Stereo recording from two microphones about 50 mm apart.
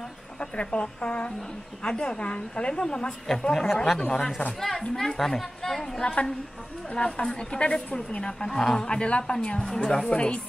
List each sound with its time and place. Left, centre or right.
0.4 s a woman's voice: left
3.7 s speech: centre
4.0 s a woman's voice: centre
4.6 s a woman's voice: centre; by 10.4 s left